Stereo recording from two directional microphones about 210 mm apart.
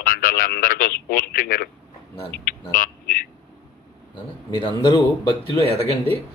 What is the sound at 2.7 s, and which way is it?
Speech, 40° left (ahead or behind).